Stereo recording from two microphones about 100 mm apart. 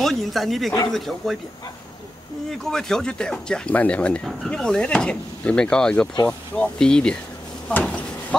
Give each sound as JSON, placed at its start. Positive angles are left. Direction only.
{"t": 0.0, "sound": "speech", "side_deg": 0}
{"t": 2.5, "sound": "speech", "side_deg": 5}
{"t": 7.6, "sound": "cupboard open or close", "side_deg": 10}